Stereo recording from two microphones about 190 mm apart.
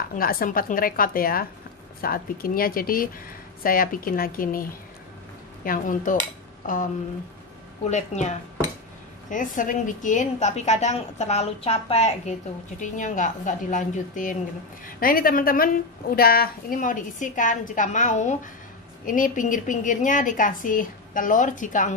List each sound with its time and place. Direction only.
0.1 s a woman's voice: 50° left (ahead or behind)
7.9 s a woman's voice: 35° left (ahead or behind)